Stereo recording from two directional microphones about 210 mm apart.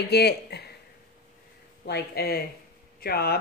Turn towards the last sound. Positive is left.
turn(degrees=50)  # may be behind; listen again after turning